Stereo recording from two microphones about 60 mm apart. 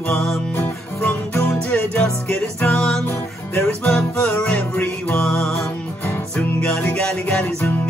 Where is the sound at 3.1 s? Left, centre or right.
Left.